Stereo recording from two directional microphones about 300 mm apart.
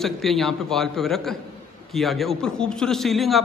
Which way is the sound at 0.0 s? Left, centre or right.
Centre.